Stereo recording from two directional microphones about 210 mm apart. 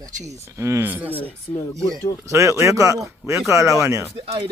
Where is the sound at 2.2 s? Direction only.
15° right (ahead or behind).